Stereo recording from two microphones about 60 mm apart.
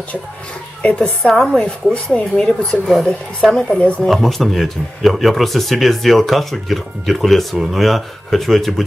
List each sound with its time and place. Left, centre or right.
0.8 s a woman's voice: left
1.2 s speech: centre
3.7 s a woman's voice: centre
4.0 s speech: centre